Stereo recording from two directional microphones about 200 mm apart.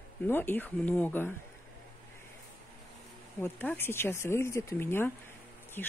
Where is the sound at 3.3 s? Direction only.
10° left (ahead or behind).